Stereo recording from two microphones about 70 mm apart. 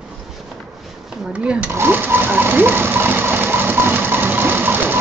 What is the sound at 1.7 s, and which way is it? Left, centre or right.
Sewing machine, right.